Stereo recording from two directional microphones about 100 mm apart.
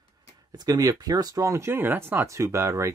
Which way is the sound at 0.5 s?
40° right (ahead or behind).